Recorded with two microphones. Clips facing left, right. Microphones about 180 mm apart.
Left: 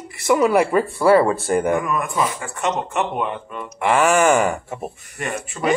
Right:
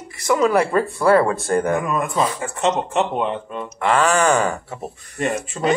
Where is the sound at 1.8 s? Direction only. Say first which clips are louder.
Right 1 dB; 25° right (ahead or behind).